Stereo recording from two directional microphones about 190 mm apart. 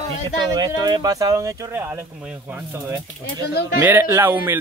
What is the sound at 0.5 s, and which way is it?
Speech, 20° right (ahead or behind).